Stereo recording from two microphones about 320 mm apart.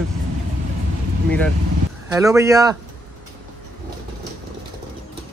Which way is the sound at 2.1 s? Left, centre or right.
Centre.